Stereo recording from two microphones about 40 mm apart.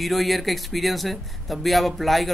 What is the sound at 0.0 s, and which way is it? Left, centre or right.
Speech, centre.